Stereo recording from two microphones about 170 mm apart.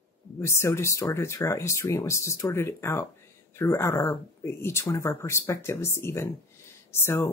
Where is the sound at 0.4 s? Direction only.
15° left (ahead or behind).